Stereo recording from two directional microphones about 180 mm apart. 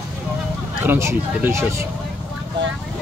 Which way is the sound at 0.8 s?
10° right (ahead or behind).